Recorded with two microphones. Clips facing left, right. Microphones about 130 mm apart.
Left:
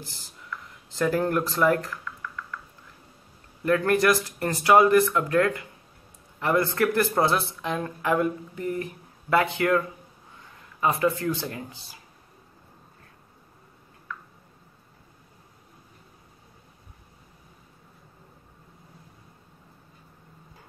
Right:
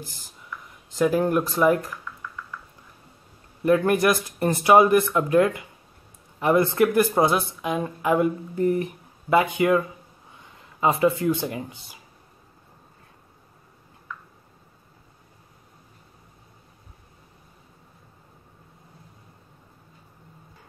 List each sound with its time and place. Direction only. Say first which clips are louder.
0.9 s speech: right 3 dB; 15° right (ahead or behind)
3.6 s speech: right 2 dB; 15° right (ahead or behind)